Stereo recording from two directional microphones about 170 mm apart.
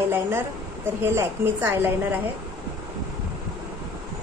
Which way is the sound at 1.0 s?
15° right (ahead or behind).